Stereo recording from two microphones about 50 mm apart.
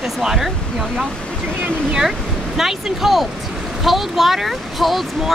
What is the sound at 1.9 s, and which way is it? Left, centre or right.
Speech, centre.